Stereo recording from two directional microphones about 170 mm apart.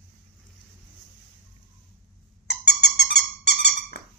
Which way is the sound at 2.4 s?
80° left.